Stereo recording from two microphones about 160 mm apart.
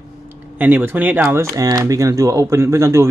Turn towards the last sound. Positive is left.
turn(degrees=-15)  # may be behind; listen again after turning